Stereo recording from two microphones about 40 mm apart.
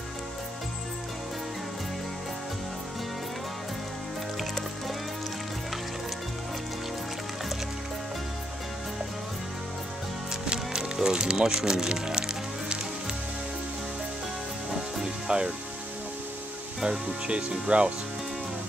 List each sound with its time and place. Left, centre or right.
4.4 s music: centre
10.3 s music: centre
15.2 s speech: right
17.3 s speech: right